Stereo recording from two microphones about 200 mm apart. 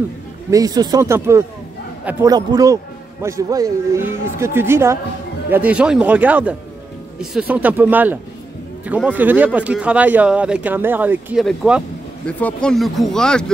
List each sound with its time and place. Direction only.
0.5 s a man's voice: 20° right (ahead or behind); by 13.5 s 5° left (ahead or behind)